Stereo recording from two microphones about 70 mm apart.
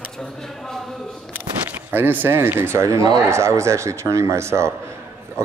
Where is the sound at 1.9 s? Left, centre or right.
Right.